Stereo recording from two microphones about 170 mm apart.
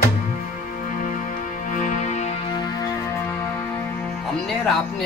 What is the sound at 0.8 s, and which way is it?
Music, 50° left (ahead or behind).